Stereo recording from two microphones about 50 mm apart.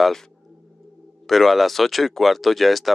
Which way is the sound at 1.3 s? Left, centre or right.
Centre.